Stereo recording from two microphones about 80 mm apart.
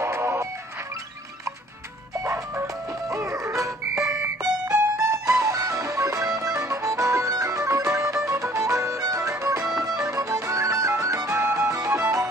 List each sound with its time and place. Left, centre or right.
0.0 s music: right
2.1 s music: right